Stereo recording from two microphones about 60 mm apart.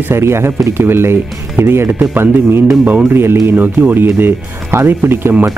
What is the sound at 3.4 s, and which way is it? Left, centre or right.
Speech, right.